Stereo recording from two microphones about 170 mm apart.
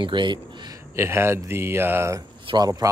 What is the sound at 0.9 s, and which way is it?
Speech, 15° right (ahead or behind).